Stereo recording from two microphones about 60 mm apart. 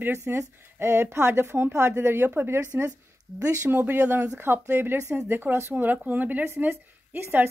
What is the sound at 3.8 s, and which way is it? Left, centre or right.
Speech, right.